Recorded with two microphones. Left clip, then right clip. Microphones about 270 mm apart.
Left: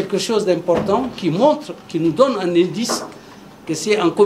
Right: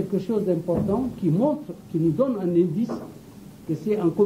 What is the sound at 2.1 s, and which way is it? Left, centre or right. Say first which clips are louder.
Speech: left 9 dB; centre.